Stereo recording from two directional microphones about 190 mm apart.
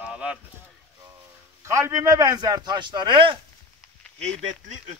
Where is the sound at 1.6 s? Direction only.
15° right (ahead or behind).